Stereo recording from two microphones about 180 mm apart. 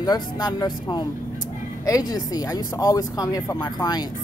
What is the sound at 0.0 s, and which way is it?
Speech, 20° left (ahead or behind).